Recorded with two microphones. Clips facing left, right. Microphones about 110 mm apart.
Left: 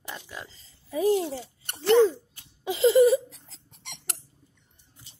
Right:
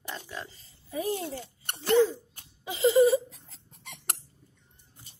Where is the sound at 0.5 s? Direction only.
90° left.